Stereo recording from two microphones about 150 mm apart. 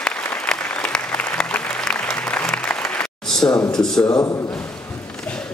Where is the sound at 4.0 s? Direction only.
20° left (ahead or behind).